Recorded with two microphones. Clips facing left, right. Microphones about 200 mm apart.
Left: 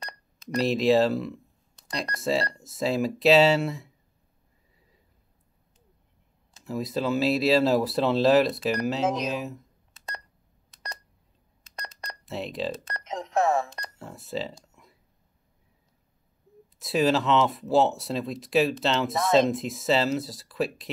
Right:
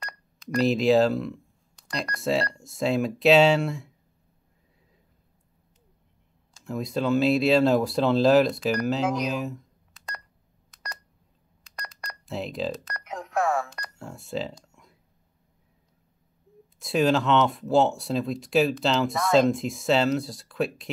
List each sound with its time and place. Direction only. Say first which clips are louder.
0.0 s telephone dialing: right 1 dB; 20° left (ahead or behind)
0.6 s speech: right 1 dB; centre (ahead or behind)
6.6 s speech: right 1 dB; centre (ahead or behind)
9.0 s speech: even; 20° left (ahead or behind)
9.3 s speech: right 2 dB; centre (ahead or behind)
11.6 s telephone dialing: left 1 dB; 25° left (ahead or behind)
12.3 s speech: right 1 dB; centre (ahead or behind)
12.8 s speech: left 2 dB; 25° left (ahead or behind)
13.9 s speech: right 1 dB; centre (ahead or behind)
14.6 s a sound: even; centre (ahead or behind)
16.7 s speech: right 1 dB; centre (ahead or behind)